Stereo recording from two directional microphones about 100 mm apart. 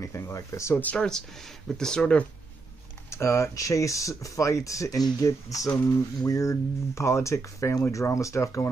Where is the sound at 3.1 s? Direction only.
30° left (ahead or behind).